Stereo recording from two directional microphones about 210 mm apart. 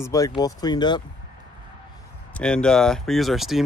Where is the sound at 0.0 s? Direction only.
15° left (ahead or behind).